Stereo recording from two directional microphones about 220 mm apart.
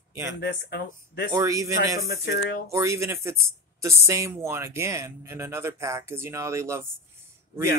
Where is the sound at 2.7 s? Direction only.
15° right (ahead or behind).